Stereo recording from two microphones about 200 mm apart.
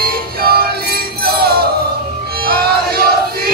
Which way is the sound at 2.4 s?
50° right (ahead or behind).